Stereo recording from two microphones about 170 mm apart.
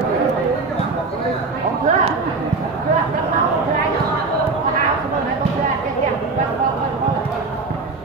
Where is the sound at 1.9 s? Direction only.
45° right (ahead or behind).